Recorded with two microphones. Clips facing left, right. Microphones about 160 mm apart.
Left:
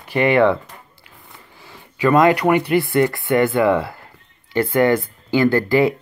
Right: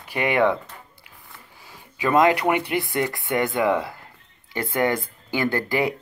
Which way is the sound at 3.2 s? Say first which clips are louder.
Left 7 dB; 55° left (ahead or behind).